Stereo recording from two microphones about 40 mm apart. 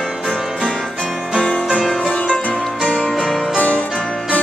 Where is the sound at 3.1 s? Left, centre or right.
Centre.